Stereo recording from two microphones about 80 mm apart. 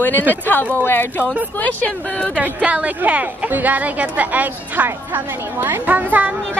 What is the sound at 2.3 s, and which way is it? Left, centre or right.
A woman's voice, centre.